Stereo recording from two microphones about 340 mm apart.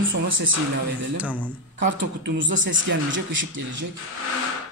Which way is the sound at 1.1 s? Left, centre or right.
Centre.